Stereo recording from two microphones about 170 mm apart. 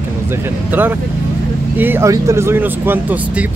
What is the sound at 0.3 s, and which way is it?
Speech, 10° right (ahead or behind).